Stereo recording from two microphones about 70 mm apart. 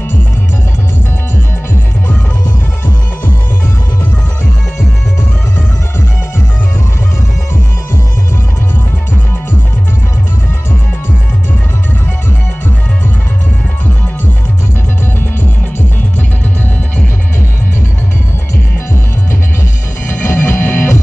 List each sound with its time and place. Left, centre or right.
20.1 s music: left